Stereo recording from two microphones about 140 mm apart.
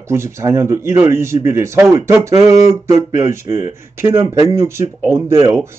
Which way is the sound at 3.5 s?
20° right (ahead or behind).